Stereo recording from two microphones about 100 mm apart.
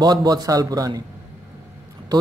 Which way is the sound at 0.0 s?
45° right (ahead or behind).